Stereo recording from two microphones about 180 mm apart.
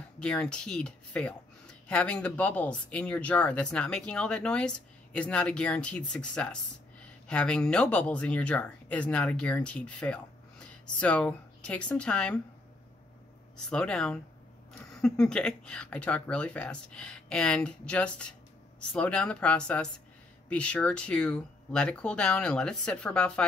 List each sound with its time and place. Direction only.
0.2 s speech: 5° left (ahead or behind)
13.7 s speech: 5° left (ahead or behind)